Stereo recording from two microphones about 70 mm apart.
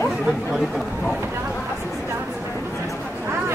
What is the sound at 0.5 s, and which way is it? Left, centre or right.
Speech, centre.